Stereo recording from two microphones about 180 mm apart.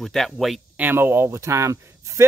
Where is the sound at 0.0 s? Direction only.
Centre (ahead or behind).